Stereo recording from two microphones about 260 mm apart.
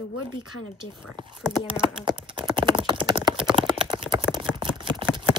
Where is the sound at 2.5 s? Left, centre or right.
Centre.